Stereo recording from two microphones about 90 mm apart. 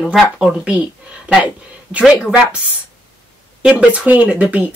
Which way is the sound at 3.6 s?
15° right (ahead or behind).